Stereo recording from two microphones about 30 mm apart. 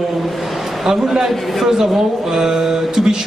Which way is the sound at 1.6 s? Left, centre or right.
Centre.